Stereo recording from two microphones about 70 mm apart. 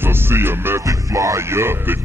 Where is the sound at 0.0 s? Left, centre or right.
Right.